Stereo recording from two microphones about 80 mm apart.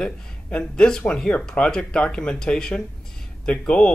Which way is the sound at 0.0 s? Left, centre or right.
Centre.